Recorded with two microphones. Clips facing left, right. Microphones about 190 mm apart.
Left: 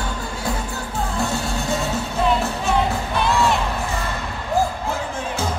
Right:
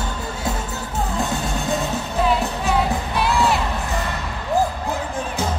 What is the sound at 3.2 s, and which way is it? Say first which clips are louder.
Music: even; centre (ahead or behind).